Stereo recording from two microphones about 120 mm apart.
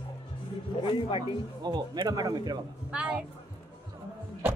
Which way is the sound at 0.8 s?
45° left (ahead or behind).